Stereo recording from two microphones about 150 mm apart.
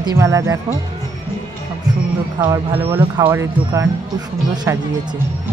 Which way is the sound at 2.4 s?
15° right (ahead or behind).